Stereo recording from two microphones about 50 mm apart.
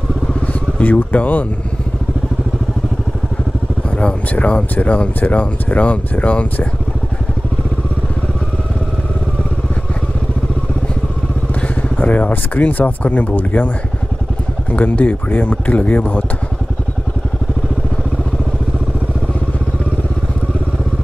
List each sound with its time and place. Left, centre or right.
0.5 s a sound: left
4.0 s speech: left
12.0 s speech: left
14.7 s speech: left